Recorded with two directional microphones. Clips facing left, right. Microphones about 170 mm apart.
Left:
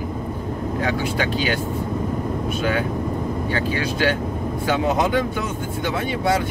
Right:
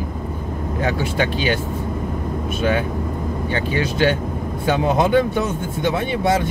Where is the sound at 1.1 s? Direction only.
25° right (ahead or behind).